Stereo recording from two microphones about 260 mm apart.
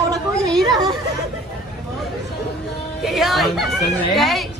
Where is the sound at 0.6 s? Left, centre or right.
Centre.